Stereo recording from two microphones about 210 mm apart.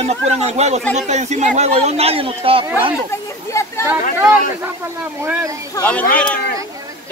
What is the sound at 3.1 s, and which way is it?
Speech, 15° left (ahead or behind).